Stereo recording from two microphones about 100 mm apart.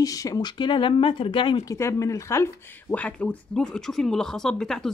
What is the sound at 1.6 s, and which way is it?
Speech, 35° left (ahead or behind).